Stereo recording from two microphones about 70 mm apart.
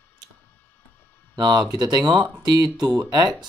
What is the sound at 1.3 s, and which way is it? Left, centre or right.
Speech, right.